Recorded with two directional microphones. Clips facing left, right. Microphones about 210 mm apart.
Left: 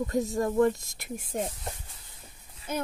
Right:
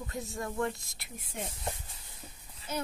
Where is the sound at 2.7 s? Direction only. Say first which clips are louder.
Left 4 dB; 55° left (ahead or behind).